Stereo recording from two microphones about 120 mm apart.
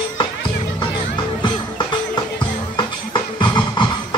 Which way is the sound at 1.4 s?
40° left (ahead or behind).